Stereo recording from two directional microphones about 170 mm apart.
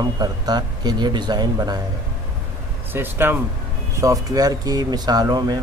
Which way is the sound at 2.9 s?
10° right (ahead or behind).